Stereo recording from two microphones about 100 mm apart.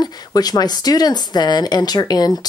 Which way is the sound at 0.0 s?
40° left (ahead or behind).